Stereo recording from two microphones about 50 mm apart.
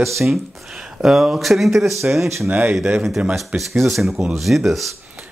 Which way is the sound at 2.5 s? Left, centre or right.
Right.